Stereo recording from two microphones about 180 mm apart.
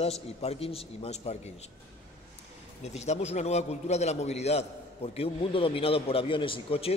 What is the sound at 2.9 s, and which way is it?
A man's voice, 40° left (ahead or behind).